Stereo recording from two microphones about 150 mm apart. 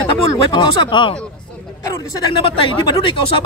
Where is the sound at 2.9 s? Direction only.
35° left (ahead or behind).